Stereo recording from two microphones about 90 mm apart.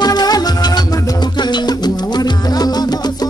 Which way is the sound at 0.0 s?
50° left (ahead or behind).